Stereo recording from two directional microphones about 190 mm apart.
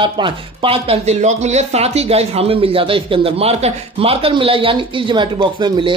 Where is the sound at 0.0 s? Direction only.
25° right (ahead or behind).